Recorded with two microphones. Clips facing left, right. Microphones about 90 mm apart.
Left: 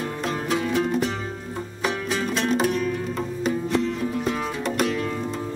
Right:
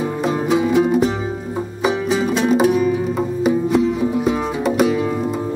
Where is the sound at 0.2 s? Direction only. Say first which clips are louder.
Right 8 dB; 5° right (ahead or behind).